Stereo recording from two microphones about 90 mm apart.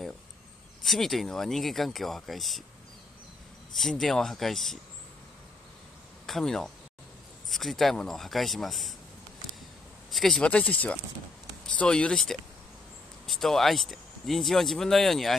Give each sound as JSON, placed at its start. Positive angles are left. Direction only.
{"t": 0.8, "sound": "speech", "side_deg": 0}
{"t": 4.0, "sound": "speech", "side_deg": 5}
{"t": 6.2, "sound": "speech", "side_deg": 5}
{"t": 10.1, "sound": "speech", "side_deg": 5}
{"t": 10.5, "sound": "speech", "side_deg": 15}